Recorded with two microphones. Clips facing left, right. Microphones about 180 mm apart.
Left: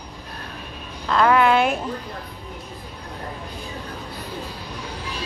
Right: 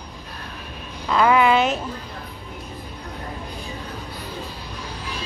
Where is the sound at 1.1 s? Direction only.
5° right (ahead or behind).